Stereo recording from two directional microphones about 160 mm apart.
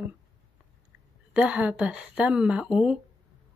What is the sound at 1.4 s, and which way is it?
A woman's voice, 10° right (ahead or behind).